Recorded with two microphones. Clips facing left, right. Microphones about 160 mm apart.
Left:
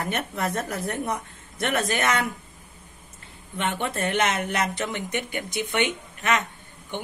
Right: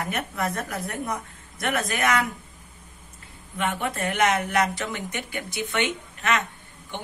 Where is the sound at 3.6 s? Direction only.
30° left (ahead or behind).